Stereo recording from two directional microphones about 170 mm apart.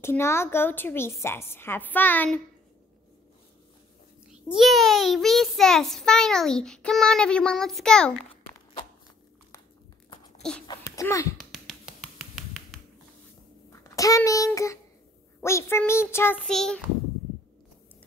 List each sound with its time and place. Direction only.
0.0 s a woman's voice: 15° left (ahead or behind)
4.3 s a child's voice: 5° right (ahead or behind)
10.0 s a sound: 30° left (ahead or behind)
10.7 s a child's voice: 20° left (ahead or behind)
11.3 s a sound: centre (ahead or behind)
13.7 s a child's voice: 20° left (ahead or behind); by 16.8 s 5° left (ahead or behind)